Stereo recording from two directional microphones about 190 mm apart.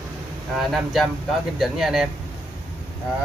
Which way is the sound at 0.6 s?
Centre (ahead or behind).